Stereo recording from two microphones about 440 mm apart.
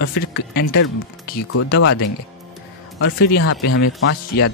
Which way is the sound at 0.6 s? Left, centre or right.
Left.